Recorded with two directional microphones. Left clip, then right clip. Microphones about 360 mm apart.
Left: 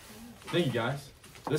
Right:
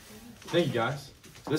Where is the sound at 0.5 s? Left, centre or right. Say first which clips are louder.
Right 3 dB; centre.